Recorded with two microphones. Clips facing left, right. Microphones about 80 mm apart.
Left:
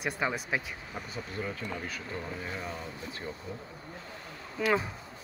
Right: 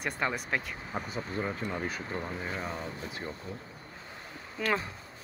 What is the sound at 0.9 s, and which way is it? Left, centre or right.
Speech, right.